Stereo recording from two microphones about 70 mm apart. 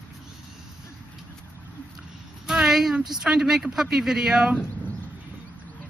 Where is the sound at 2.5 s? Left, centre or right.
Centre.